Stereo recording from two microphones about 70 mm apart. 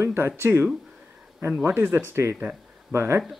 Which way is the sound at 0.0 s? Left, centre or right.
Right.